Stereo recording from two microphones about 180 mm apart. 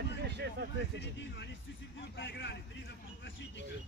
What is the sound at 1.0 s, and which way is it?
Speech, 75° left (ahead or behind).